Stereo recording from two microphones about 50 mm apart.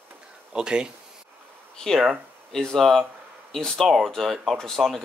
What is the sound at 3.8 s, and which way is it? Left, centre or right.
Speech, centre.